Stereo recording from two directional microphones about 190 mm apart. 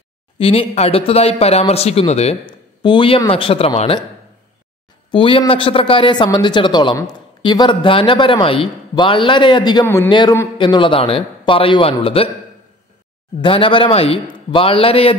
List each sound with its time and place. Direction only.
0.4 s speech: 30° left (ahead or behind)
5.1 s speech: 25° left (ahead or behind)
13.4 s speech: 25° left (ahead or behind)